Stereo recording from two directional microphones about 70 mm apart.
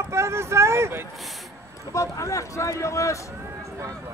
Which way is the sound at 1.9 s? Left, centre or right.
Left.